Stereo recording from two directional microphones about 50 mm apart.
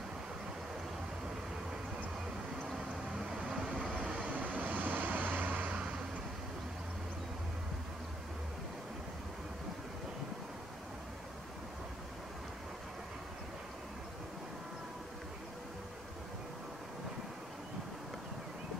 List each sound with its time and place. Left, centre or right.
3.3 s vehicle: centre
4.4 s vehicle: right